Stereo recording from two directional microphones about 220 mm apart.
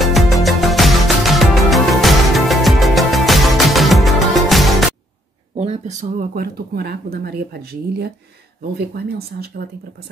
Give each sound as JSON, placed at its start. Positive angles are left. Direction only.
{"t": 0.0, "sound": "music", "side_deg": 0}
{"t": 5.6, "sound": "speech", "side_deg": -30}